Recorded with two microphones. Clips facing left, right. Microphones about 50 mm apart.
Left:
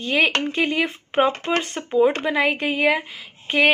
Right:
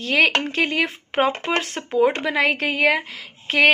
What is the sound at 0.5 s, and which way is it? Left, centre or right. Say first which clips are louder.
Speech: even; right.